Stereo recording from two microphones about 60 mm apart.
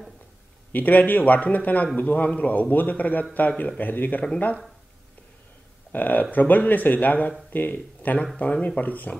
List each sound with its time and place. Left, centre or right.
0.7 s a man's voice: left
5.9 s a man's voice: left